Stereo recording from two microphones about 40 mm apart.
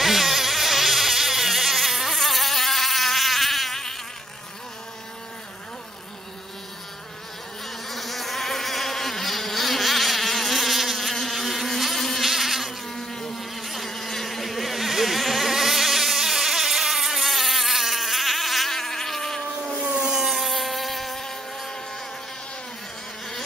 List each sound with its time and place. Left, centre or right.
0.0 s insect: centre
7.6 s insect: centre
12.8 s insect: centre
13.4 s insect: centre
19.8 s rub: centre
20.2 s insect: centre